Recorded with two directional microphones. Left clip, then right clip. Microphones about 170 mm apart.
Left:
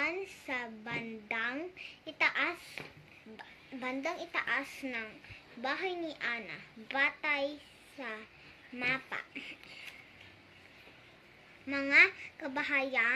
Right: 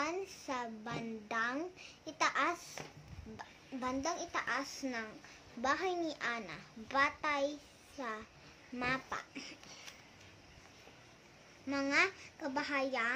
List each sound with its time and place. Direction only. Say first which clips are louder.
0.0 s a woman's voice: left 3 dB; 10° right (ahead or behind)
3.8 s a child's voice: left 1 dB; 10° right (ahead or behind)
8.7 s a child's voice: left 3 dB; 15° right (ahead or behind)
11.7 s a child's voice: left 7 dB; 10° right (ahead or behind)